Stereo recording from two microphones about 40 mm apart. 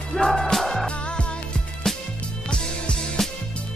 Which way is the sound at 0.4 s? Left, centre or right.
Centre.